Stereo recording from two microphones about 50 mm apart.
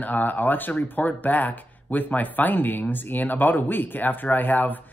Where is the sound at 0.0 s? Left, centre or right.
Left.